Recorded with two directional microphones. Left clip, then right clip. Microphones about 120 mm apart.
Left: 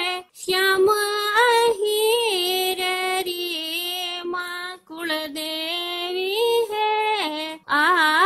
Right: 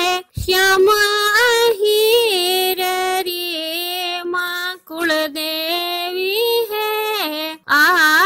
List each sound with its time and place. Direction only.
0.0 s music: 30° right (ahead or behind)
6.2 s female singing: 25° right (ahead or behind)
7.7 s mantra: 25° right (ahead or behind)